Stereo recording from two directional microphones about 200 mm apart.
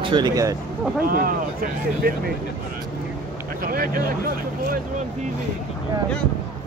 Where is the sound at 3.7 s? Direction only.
45° right (ahead or behind).